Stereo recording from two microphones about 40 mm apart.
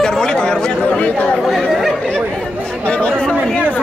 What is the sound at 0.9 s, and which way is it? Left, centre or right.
Speech, left.